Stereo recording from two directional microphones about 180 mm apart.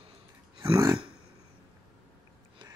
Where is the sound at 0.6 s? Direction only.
20° right (ahead or behind).